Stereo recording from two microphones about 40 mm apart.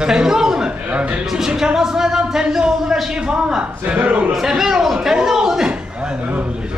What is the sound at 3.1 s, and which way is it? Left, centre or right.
Speech, right.